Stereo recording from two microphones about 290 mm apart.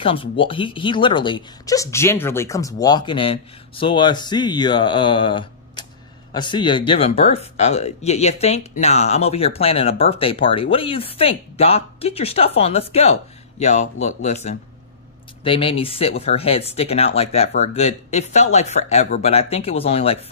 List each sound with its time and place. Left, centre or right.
0.0 s speech: centre